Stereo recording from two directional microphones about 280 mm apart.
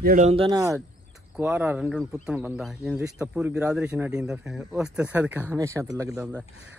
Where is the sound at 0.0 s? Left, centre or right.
Right.